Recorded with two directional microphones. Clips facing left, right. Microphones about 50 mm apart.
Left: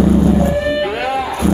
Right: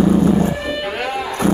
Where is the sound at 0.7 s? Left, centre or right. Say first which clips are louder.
Left 5 dB; centre.